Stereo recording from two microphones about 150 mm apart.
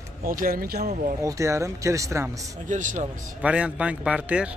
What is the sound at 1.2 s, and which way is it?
Speech, 20° right (ahead or behind).